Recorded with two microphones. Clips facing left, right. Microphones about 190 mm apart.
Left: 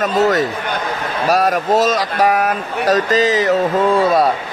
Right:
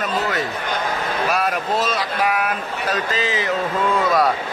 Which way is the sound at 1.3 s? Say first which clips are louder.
Left 9 dB; 40° left (ahead or behind).